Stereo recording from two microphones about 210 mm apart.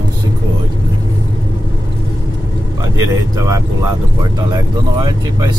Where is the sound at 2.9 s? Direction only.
15° right (ahead or behind).